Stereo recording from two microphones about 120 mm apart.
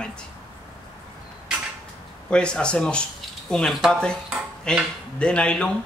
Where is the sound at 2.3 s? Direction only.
10° left (ahead or behind).